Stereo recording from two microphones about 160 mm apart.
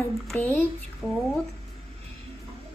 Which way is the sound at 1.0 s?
15° left (ahead or behind).